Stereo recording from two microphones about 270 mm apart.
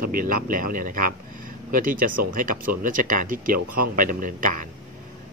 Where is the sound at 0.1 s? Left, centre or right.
Right.